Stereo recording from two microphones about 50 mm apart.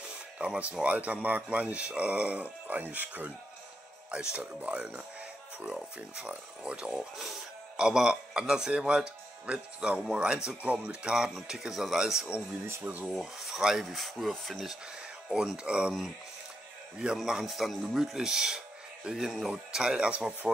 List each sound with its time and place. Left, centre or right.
0.4 s speech: right
4.1 s speech: centre
10.6 s speech: right
11.1 s speech: centre
12.8 s speech: right
13.2 s speech: centre
13.8 s speech: centre; by 15.9 s right
17.3 s speech: centre